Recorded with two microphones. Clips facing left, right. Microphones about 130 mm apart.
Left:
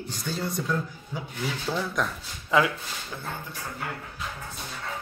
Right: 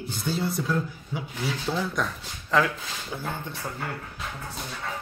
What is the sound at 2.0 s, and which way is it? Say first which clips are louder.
Speech: even; centre (ahead or behind).